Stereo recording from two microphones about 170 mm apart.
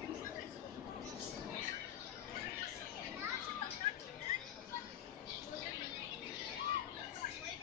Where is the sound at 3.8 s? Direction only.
45° left (ahead or behind).